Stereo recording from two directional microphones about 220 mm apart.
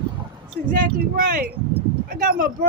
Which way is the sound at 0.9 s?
40° right (ahead or behind).